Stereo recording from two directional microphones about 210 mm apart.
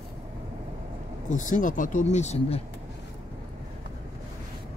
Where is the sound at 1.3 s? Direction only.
35° left (ahead or behind).